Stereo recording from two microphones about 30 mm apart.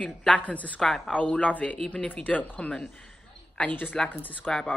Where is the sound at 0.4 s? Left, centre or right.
Left.